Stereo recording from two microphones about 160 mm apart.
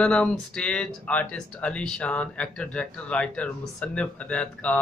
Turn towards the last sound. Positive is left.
turn(degrees=10)  # may be behind; listen again after turning